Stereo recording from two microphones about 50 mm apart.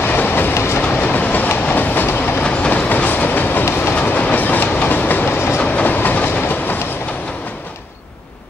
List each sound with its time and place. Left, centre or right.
0.0 s train: left
0.6 s train: left
1.0 s train: left
2.0 s train: left
2.7 s train: left
3.6 s train: left
4.0 s train: left